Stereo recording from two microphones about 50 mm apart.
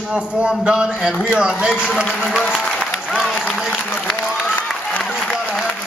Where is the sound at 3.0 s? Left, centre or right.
Centre.